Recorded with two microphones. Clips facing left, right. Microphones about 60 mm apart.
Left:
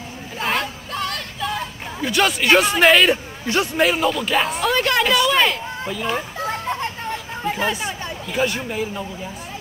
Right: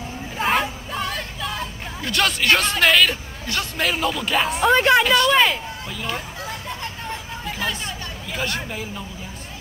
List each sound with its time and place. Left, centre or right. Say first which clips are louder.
0.4 s music: right 2 dB; centre; by 3.8 s left
3.8 s speech: left 2 dB; centre
4.6 s a woman's voice: right 6 dB; centre
5.0 s speech: even; centre
7.4 s hubbub: left 6 dB; left
8.3 s speech: left 5 dB; centre